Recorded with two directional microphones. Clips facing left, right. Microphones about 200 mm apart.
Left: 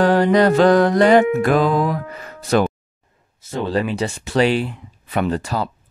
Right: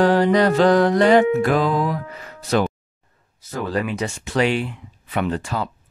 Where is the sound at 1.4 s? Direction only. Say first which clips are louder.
Left 2 dB; 50° left (ahead or behind).